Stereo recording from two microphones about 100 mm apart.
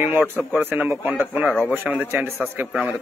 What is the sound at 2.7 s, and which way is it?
Speech, 10° right (ahead or behind).